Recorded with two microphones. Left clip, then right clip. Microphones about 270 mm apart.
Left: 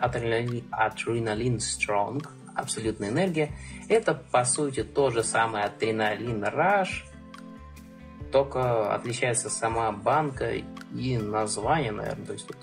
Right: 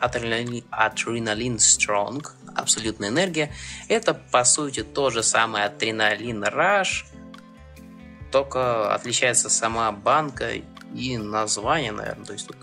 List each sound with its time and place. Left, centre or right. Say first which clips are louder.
0.0 s speech: right 2 dB; centre
8.3 s speech: right 3 dB; centre